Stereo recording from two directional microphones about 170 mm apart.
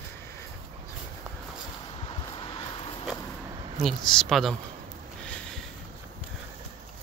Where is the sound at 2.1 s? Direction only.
30° left (ahead or behind).